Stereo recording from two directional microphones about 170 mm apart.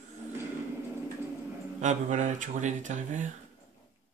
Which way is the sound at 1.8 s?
45° right (ahead or behind).